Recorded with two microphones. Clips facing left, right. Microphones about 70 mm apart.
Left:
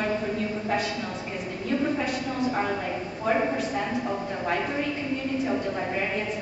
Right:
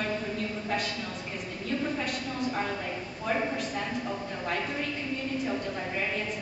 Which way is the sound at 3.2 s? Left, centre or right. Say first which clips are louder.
Left 5 dB; centre.